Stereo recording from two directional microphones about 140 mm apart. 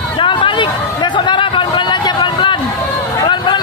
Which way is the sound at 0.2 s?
35° left (ahead or behind).